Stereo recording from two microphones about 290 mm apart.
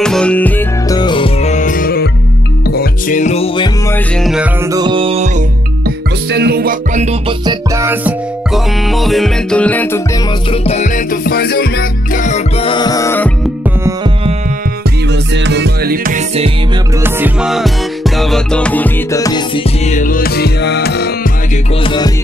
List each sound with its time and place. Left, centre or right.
0.0 s music: centre
4.2 s music: centre
4.7 s music: centre
5.9 s music: right; by 9.8 s centre
10.7 s music: left
12.3 s music: centre
15.4 s music: right
17.0 s music: centre; by 21.1 s left
21.8 s music: centre